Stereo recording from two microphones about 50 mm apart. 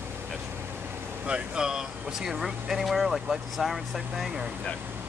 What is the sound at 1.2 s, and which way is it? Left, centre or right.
Speech, centre.